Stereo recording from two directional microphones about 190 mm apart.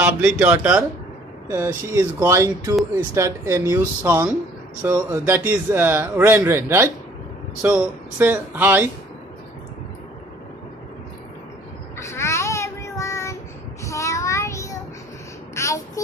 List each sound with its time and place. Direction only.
0.0 s speech: 10° right (ahead or behind)
12.0 s child singing: 15° left (ahead or behind)
15.5 s a sound: 15° left (ahead or behind)